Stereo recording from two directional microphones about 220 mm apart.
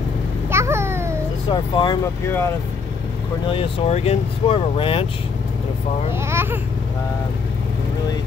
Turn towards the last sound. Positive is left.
turn(degrees=-10)  # may be behind; listen again after turning